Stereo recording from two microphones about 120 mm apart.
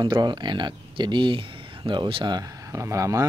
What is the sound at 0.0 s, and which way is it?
Speech, 40° right (ahead or behind).